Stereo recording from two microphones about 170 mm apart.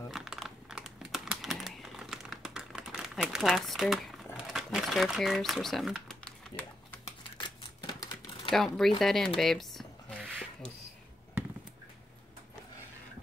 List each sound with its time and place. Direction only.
0.1 s typing: centre (ahead or behind)
4.4 s crumpling: centre (ahead or behind)
7.3 s typewriter: 25° left (ahead or behind)
8.5 s speech: centre (ahead or behind)
9.4 s a sound: centre (ahead or behind)